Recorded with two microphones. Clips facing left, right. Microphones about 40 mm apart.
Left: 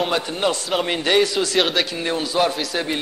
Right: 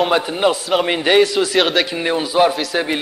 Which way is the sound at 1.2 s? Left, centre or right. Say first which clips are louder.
Right 4 dB; centre.